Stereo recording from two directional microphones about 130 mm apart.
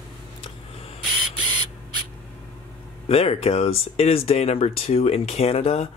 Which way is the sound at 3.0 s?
50° left (ahead or behind).